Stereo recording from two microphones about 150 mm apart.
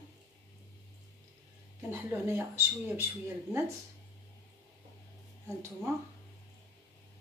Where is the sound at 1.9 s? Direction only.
15° right (ahead or behind).